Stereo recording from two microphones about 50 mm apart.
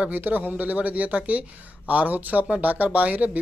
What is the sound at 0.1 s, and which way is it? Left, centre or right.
Speech, right.